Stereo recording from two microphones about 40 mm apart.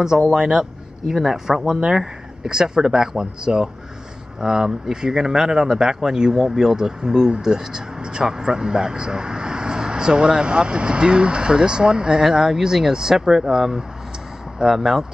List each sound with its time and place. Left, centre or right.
0.3 s speech: centre
1.7 s speech: centre